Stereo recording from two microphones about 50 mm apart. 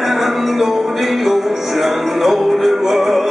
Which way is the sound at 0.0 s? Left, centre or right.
Centre.